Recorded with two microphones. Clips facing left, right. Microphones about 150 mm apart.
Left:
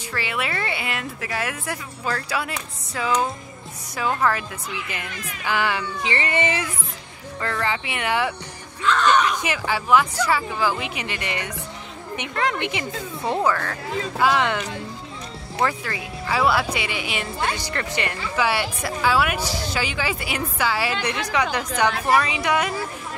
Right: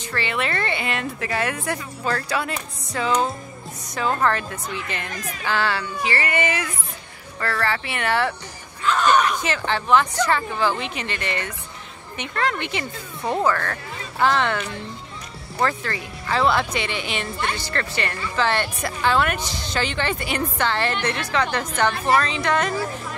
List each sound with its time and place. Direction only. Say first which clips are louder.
0.1 s speech: right 2 dB; 5° left (ahead or behind)
5.0 s speech: right 3 dB; 40° right (ahead or behind)
5.4 s speech: even; 15° left (ahead or behind)
8.8 s speech: even; 10° right (ahead or behind)
9.4 s speech: right 1 dB; 10° left (ahead or behind)
15.6 s speech: right 1 dB; 10° left (ahead or behind)